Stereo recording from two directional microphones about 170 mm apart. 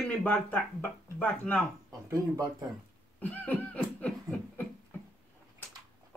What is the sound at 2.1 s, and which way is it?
Speech, 20° right (ahead or behind).